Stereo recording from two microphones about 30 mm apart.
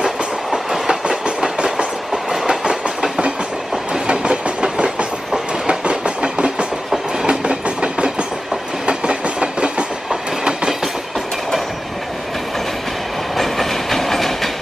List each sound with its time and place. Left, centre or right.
0.8 s train: right
4.1 s train: right
13.4 s train: centre